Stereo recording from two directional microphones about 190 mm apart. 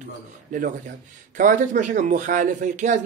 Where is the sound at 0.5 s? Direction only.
45° right (ahead or behind).